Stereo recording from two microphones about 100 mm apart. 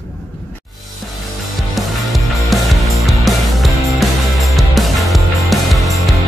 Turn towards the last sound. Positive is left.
turn(degrees=0)  # may be behind; listen again after turning